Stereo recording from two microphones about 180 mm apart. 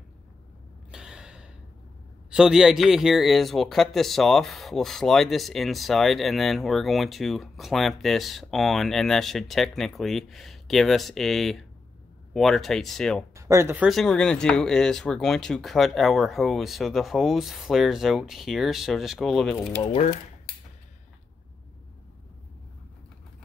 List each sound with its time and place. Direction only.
0.9 s gasp: 5° right (ahead or behind)
2.3 s speech: 5° right (ahead or behind)
13.3 s speech: 15° right (ahead or behind)
13.8 s speech: centre (ahead or behind)
19.8 s speech: 35° left (ahead or behind)